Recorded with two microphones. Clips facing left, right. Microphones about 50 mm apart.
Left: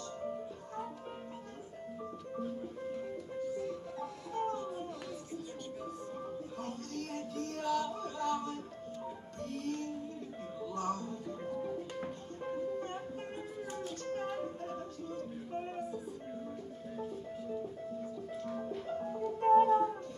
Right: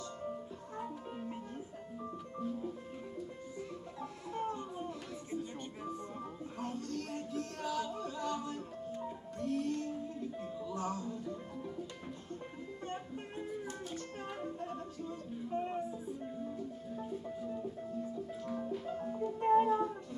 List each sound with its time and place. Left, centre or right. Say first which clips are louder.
3.6 s music: left 5 dB; centre
5.3 s music: right 1 dB; right
6.6 s music: right 5 dB; centre
12.7 s music: left 3 dB; centre
18.7 s music: left 1 dB; centre